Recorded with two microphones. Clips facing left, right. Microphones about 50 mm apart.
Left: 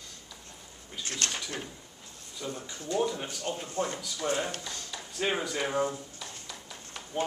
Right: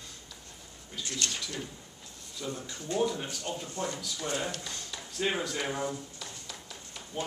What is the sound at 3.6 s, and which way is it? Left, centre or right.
Speech, left.